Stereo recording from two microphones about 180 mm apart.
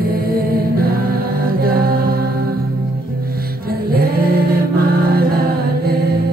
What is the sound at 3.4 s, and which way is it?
Music, 55° right (ahead or behind).